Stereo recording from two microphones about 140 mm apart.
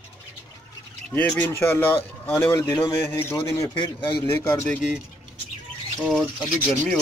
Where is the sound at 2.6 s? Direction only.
30° left (ahead or behind).